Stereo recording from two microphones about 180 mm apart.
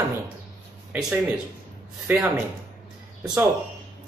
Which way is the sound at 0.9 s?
5° right (ahead or behind).